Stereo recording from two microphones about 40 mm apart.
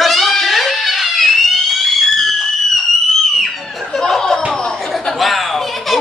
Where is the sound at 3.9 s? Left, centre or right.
Centre.